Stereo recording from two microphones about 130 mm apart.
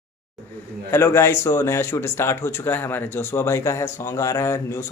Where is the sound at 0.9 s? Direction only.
20° left (ahead or behind).